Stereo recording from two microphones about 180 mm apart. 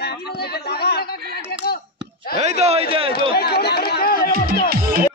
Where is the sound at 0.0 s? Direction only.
65° left (ahead or behind).